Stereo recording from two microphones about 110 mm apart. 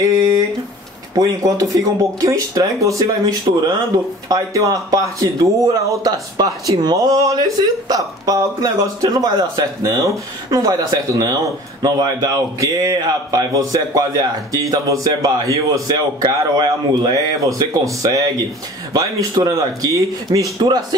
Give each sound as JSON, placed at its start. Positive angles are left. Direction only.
{"t": 1.1, "sound": "a man's voice", "side_deg": -35}